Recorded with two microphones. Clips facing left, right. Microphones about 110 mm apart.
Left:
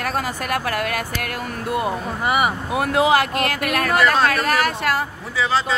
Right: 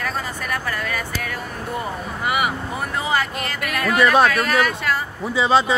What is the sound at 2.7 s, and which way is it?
Speech, 70° left (ahead or behind).